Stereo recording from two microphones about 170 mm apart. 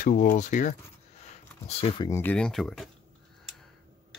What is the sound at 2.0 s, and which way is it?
Speech, 15° left (ahead or behind).